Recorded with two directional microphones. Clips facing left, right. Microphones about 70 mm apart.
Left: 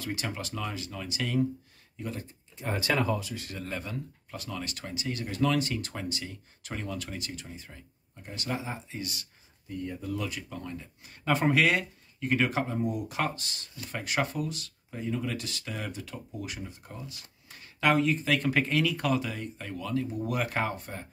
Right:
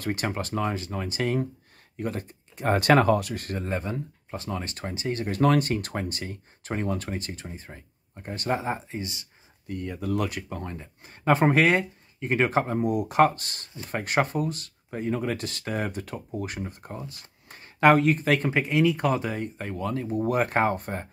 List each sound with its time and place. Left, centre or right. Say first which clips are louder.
0.0 s speech: right 6 dB; right
2.0 s speech: right 6 dB; right
3.5 s speech: right 7 dB; right
9.7 s speech: right 5 dB; right
10.5 s speech: right 3 dB; right
12.8 s speech: right 10 dB; right
18.5 s speech: right 4 dB; centre; by 21.1 s right